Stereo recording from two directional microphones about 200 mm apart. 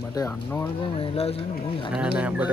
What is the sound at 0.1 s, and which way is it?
Speech, 15° left (ahead or behind).